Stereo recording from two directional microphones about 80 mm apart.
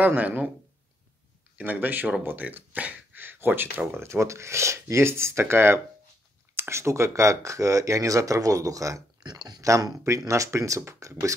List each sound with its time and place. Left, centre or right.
0.0 s speech: right
1.6 s speech: right
9.2 s a sound: right
9.7 s speech: right